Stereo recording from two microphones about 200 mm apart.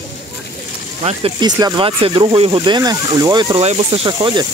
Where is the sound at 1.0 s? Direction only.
25° right (ahead or behind).